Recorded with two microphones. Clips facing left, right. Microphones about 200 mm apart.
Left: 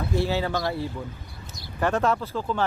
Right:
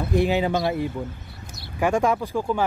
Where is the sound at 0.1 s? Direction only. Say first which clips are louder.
Right 5 dB; 15° right (ahead or behind).